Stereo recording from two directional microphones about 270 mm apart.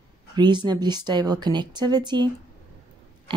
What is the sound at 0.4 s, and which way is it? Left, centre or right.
A woman's voice, centre.